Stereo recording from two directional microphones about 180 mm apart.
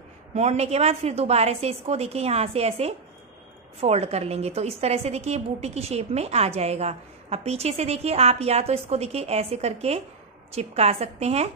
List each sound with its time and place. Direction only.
0.3 s a woman's voice: 40° right (ahead or behind)